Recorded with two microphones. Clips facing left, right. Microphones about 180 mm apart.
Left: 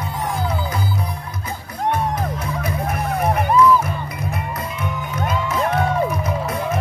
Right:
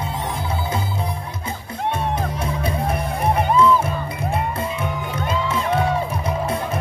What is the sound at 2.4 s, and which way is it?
Music, 30° right (ahead or behind).